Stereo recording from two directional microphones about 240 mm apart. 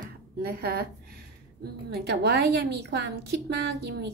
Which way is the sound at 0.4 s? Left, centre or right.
Right.